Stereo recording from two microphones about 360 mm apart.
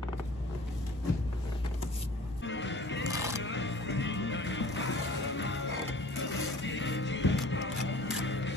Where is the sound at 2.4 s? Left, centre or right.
Left.